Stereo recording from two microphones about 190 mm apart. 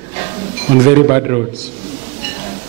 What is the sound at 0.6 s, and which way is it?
Speech, 15° right (ahead or behind).